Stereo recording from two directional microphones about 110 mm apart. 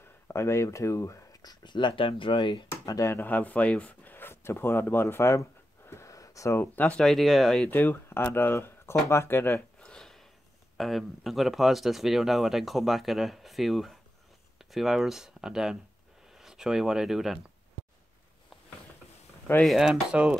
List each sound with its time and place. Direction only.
0.3 s speech: 25° left (ahead or behind)
3.2 s speech: 15° left (ahead or behind)
7.6 s speech: 15° left (ahead or behind)
9.1 s a sound: 20° left (ahead or behind); by 10.2 s 5° left (ahead or behind)
10.8 s speech: centre (ahead or behind)
19.6 s speech: centre (ahead or behind)